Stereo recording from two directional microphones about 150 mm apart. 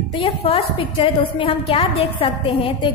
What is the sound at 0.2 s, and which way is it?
A woman's voice, 40° left (ahead or behind).